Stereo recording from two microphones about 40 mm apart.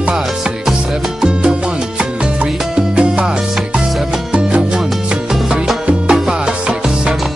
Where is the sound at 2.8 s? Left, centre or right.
Right.